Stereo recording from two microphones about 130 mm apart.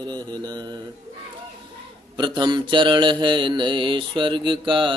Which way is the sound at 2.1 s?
35° right (ahead or behind).